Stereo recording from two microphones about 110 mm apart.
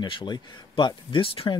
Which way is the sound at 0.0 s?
50° left (ahead or behind).